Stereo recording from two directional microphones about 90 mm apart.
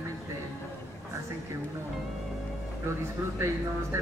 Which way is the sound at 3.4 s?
30° right (ahead or behind).